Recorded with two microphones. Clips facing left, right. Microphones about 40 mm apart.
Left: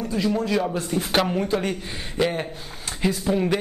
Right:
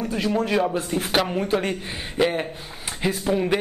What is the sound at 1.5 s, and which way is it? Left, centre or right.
A man's voice, centre.